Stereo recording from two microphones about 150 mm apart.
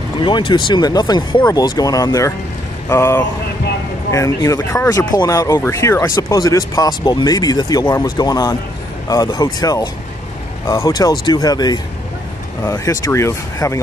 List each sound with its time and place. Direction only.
0.2 s speech: 30° left (ahead or behind)